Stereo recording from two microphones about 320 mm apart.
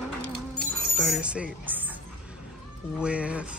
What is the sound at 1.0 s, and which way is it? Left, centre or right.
Music, centre.